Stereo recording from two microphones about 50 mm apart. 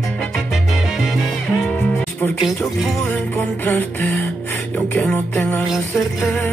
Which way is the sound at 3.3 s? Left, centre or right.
Left.